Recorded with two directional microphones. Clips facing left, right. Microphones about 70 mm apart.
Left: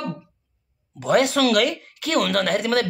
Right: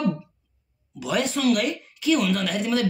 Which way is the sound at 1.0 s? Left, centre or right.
Left.